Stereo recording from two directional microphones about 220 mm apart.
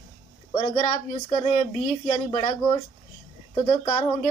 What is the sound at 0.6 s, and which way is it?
Speech, 30° left (ahead or behind).